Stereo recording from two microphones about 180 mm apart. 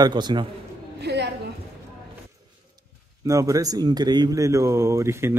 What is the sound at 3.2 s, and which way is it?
Speech, 20° right (ahead or behind).